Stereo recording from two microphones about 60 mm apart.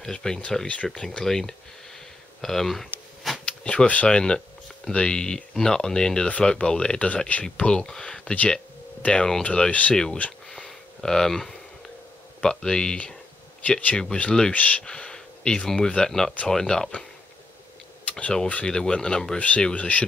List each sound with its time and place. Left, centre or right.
0.0 s speech: centre
2.4 s a sound: centre
3.4 s speech: left
11.0 s speech: centre
13.6 s speech: left
18.1 s speech: centre